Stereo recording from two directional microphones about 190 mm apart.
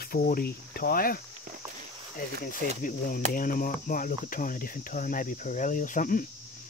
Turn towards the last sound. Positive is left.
turn(degrees=45)  # may be behind; listen again after turning